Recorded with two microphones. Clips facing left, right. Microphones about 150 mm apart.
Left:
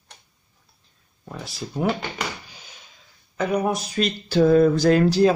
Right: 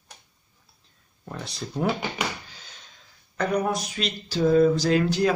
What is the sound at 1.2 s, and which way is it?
Speech, centre (ahead or behind).